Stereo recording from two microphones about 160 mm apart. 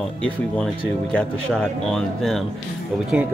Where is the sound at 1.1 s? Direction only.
5° left (ahead or behind).